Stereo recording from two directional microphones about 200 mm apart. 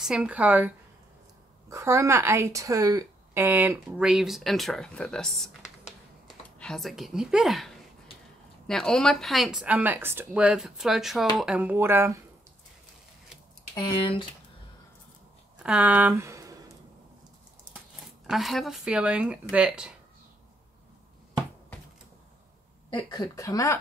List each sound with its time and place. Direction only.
0.0 s speech: 5° right (ahead or behind)
13.7 s speech: 25° left (ahead or behind)
15.6 s speech: 5° right (ahead or behind)
18.2 s speech: centre (ahead or behind)
22.9 s speech: 20° left (ahead or behind)